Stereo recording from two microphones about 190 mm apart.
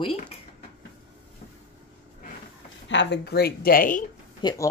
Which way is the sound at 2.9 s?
70° left (ahead or behind).